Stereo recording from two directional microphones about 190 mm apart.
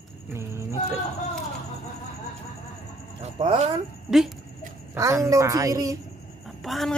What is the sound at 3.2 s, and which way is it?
Speech, 30° right (ahead or behind).